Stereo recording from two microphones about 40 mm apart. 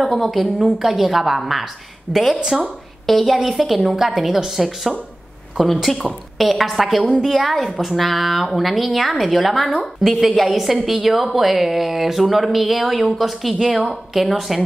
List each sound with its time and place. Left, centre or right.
0.0 s a woman's voice: centre
2.3 s a woman's voice: centre
3.1 s a woman's voice: centre